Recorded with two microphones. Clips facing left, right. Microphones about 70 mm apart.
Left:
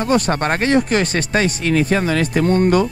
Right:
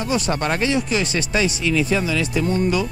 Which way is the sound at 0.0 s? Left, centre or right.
Left.